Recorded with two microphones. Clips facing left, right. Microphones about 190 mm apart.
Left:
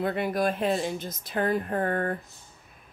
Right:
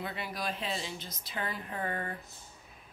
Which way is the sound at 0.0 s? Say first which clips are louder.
Left 11 dB; 55° left (ahead or behind).